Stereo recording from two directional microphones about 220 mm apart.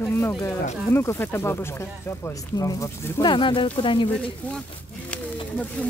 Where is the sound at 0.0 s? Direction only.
10° left (ahead or behind).